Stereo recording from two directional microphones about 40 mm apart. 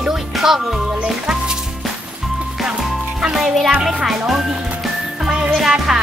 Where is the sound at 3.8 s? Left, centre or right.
Centre.